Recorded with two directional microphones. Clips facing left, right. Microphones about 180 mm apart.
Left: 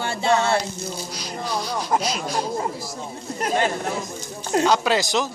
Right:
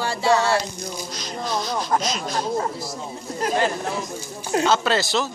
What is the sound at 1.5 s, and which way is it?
Speech, 10° left (ahead or behind).